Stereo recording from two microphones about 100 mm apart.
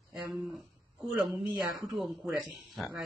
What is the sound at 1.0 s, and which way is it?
Speech, centre (ahead or behind).